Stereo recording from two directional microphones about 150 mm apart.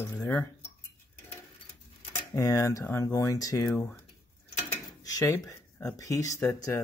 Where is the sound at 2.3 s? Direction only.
20° left (ahead or behind).